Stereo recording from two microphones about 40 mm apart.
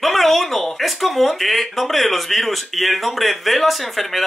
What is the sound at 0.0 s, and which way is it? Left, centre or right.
Speech, centre.